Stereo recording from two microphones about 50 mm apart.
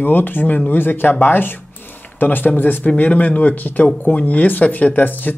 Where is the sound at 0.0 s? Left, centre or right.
Left.